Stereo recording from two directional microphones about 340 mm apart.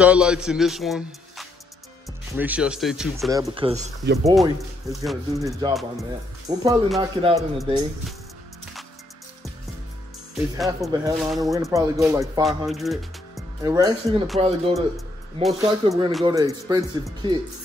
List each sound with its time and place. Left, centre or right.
0.0 s a man's voice: centre; by 4.2 s right
4.4 s speech: centre
6.5 s speech: centre
10.3 s speech: centre
14.4 s speech: centre